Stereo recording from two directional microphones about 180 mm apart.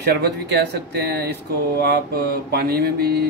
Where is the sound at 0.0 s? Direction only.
65° right (ahead or behind).